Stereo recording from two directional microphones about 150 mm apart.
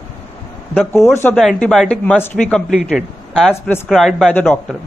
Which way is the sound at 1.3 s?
Centre (ahead or behind).